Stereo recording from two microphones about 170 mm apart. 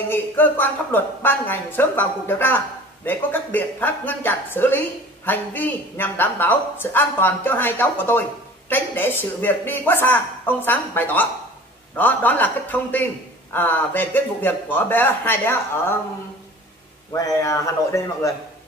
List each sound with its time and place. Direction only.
0.1 s speech: 10° left (ahead or behind)
17.1 s a man's voice: 20° left (ahead or behind)